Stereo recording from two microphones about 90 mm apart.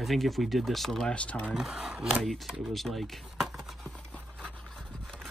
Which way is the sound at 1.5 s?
5° right (ahead or behind).